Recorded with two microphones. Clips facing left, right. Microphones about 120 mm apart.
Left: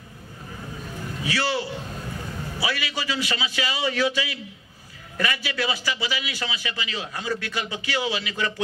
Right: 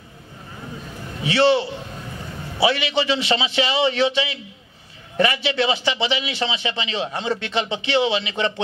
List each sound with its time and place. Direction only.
1.2 s a man's voice: 25° right (ahead or behind)